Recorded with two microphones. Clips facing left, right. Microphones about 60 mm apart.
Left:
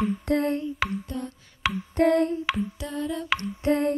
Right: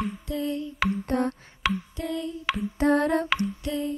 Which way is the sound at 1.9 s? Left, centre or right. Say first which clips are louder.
Left 10 dB; left.